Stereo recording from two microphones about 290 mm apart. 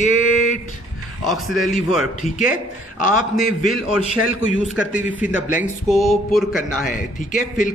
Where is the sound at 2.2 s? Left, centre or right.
Left.